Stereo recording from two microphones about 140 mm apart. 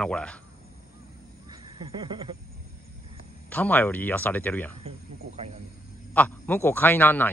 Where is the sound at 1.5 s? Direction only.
35° right (ahead or behind).